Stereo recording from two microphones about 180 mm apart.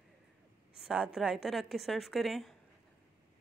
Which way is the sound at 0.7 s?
5° right (ahead or behind).